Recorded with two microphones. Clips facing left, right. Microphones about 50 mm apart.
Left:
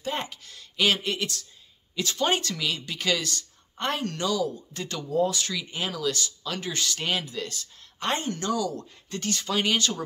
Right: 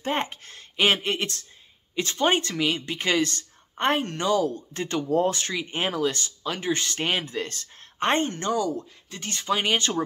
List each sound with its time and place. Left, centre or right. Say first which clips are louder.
0.0 s speech: right 4 dB; right
8.7 s speech: even; centre
9.3 s speech: right 2 dB; right